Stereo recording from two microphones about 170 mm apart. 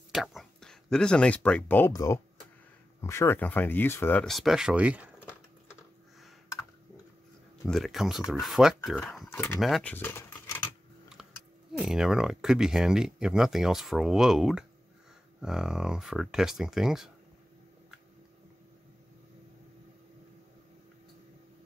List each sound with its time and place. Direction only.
0.1 s speech: centre (ahead or behind)
1.9 s speech: 20° left (ahead or behind); by 5.1 s 10° right (ahead or behind)
7.6 s speech: centre (ahead or behind)
9.1 s a sound: centre (ahead or behind)
9.6 s speech: centre (ahead or behind); by 10.7 s 20° left (ahead or behind)
11.7 s speech: 5° right (ahead or behind)